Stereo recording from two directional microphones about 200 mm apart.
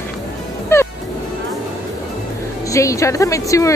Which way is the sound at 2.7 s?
15° left (ahead or behind).